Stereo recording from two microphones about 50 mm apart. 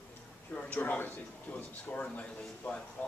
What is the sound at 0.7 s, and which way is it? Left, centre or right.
Speech, left.